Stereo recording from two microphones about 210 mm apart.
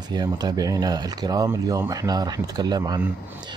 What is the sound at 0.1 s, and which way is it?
Speech, 20° right (ahead or behind).